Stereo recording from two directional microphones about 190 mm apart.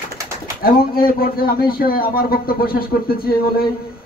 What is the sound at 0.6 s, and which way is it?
Speech, 50° left (ahead or behind).